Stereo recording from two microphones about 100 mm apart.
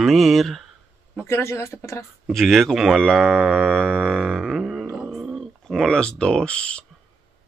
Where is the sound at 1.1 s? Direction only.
25° left (ahead or behind).